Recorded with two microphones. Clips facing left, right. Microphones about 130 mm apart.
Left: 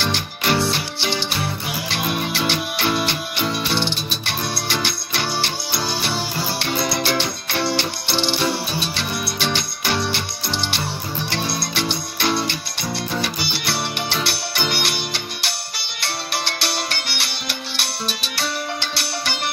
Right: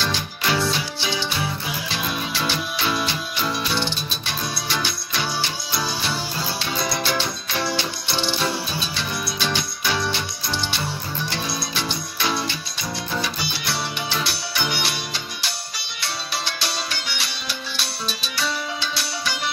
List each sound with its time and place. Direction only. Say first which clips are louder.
0.0 s music: left 2 dB; 65° left (ahead or behind)